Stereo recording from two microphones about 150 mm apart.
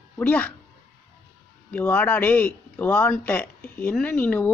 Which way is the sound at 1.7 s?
10° left (ahead or behind).